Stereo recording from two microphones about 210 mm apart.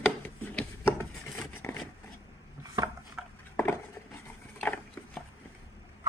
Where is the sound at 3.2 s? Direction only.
5° right (ahead or behind).